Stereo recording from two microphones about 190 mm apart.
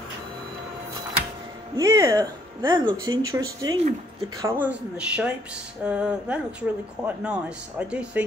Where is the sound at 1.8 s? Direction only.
15° right (ahead or behind).